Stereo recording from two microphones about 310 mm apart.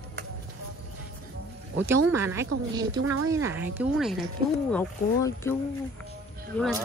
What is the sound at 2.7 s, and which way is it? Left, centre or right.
Speech, centre.